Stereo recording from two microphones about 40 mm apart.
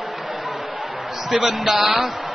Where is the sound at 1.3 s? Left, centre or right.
Centre.